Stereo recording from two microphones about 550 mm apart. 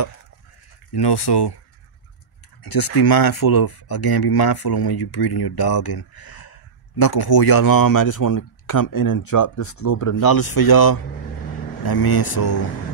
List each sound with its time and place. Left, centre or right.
0.9 s speech: left
2.6 s speech: left
11.8 s speech: left